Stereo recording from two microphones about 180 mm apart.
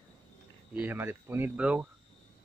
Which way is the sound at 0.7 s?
10° right (ahead or behind).